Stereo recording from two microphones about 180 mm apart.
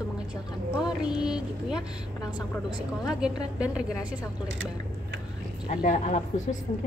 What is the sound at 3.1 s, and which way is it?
A woman's voice, 5° right (ahead or behind).